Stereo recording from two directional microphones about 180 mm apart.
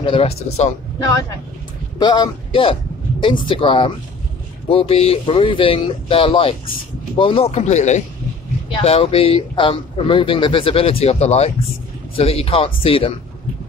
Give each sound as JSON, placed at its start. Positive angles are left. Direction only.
{"t": 0.0, "sound": "speech", "side_deg": 30}
{"t": 2.0, "sound": "a man's voice", "side_deg": 25}